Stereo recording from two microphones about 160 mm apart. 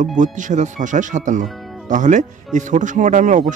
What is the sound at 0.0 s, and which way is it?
Speech, 50° right (ahead or behind).